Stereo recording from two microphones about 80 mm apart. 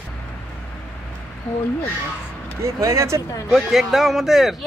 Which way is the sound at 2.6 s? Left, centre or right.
Right.